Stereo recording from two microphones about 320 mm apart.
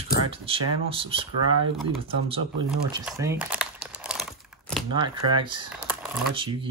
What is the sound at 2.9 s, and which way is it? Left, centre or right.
Crumpling, centre.